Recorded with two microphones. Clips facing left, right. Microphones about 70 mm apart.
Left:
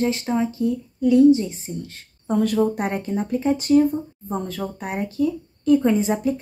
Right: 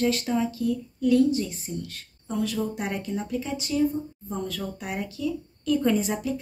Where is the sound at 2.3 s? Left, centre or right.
Left.